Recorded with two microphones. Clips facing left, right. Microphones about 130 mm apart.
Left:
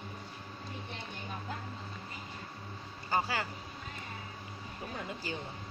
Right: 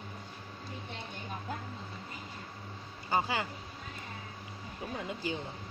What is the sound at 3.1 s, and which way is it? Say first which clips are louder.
Speech: right 1 dB; 20° right (ahead or behind).